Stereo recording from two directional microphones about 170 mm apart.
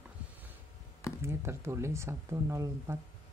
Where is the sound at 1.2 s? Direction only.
15° right (ahead or behind).